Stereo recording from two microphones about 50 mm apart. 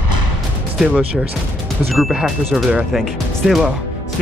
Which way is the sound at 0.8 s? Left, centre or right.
Right.